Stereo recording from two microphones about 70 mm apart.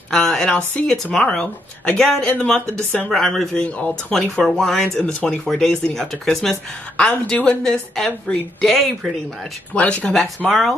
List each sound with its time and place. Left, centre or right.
0.1 s speech: centre
3.6 s speech: left
4.1 s speech: centre
9.8 s speech: centre
10.4 s speech: centre